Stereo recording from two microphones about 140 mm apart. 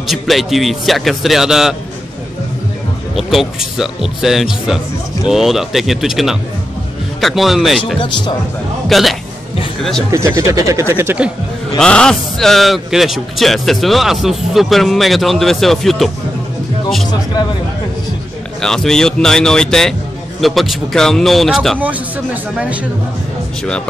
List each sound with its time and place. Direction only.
0.0 s a man's voice: centre (ahead or behind)
3.2 s a man's voice: centre (ahead or behind)
8.8 s a man's voice: centre (ahead or behind)
10.1 s speech: 20° right (ahead or behind)
11.8 s a man's voice: 5° left (ahead or behind)
18.6 s a man's voice: 5° left (ahead or behind)